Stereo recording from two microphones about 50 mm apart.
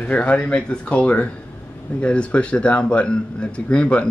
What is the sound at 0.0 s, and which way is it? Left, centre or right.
A man's voice, left.